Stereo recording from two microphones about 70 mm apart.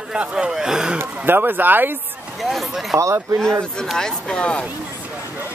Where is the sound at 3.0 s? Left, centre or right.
Right.